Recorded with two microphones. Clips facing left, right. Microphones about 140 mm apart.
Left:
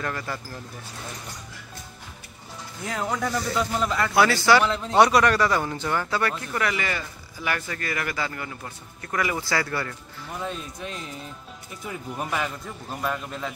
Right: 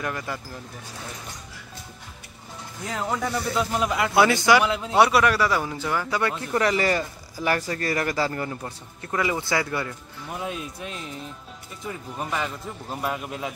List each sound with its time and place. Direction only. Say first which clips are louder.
0.0 s a man's voice: even; 15° right (ahead or behind)
2.9 s a man's voice: even; centre (ahead or behind)
6.4 s speech: right 5 dB; 30° right (ahead or behind); by 12.4 s 5° left (ahead or behind)
13.0 s a man's voice: even; 10° right (ahead or behind)